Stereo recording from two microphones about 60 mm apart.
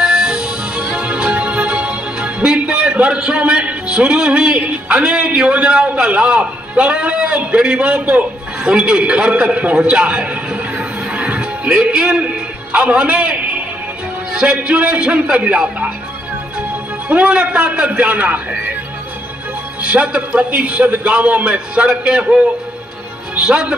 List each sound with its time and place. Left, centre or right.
0.0 s music: centre
8.6 s a man's voice: centre
17.1 s a man's voice: centre
19.8 s a man's voice: centre